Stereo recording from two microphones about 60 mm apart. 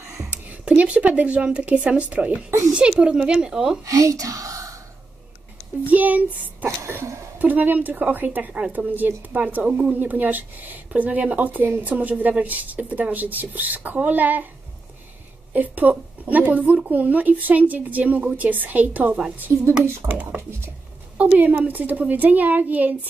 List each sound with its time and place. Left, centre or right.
0.3 s a woman's voice: right
3.8 s speech: right
5.9 s a woman's voice: right
6.6 s a sound: right
7.3 s a woman's voice: right
15.5 s a woman's voice: right